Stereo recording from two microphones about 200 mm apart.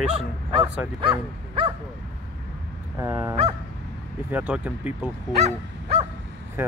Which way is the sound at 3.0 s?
10° right (ahead or behind).